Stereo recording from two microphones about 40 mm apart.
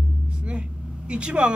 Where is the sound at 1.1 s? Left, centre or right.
Right.